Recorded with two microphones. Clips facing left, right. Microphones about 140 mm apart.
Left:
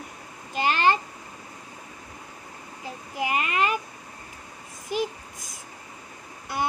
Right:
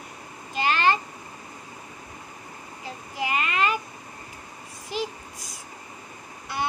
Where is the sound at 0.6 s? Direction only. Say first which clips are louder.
Left 1 dB; 45° left (ahead or behind).